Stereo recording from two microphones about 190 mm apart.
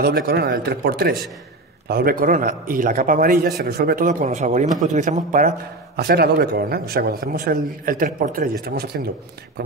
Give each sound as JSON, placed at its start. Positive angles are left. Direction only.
{"t": 0.0, "sound": "a man's voice", "side_deg": -55}
{"t": 5.9, "sound": "a man's voice", "side_deg": -55}